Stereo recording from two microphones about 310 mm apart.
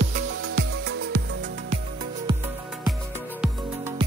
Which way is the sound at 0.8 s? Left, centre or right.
Right.